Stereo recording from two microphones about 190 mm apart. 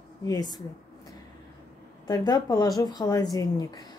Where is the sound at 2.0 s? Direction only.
20° left (ahead or behind).